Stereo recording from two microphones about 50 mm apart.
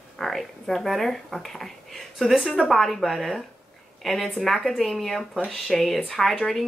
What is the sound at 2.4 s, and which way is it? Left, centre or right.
Speech, centre.